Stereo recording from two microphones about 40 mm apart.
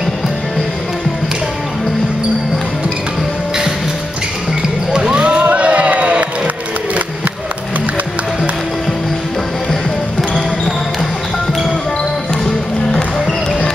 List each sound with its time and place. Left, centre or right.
4.9 s music: right